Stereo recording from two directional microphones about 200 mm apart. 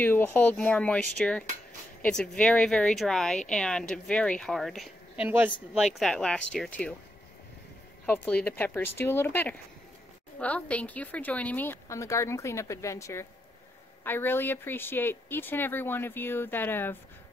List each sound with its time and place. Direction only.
0.0 s speech: 10° left (ahead or behind); by 5.5 s 10° right (ahead or behind)
5.9 s speech: 5° left (ahead or behind)
8.1 s speech: 10° left (ahead or behind)